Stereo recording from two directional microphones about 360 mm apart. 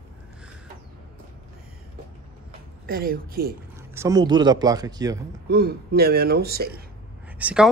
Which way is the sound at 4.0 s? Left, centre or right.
Centre.